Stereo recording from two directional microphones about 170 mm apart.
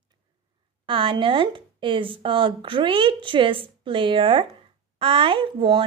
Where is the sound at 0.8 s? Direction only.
30° right (ahead or behind).